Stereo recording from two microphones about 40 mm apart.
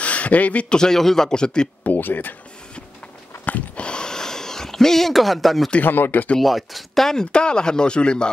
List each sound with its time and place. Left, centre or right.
0.0 s a sound: left
0.7 s a man's voice: centre
1.9 s speech: left
3.7 s a sound: left; by 5.7 s centre
5.8 s speech: left
6.4 s speech: centre
7.1 s speech: centre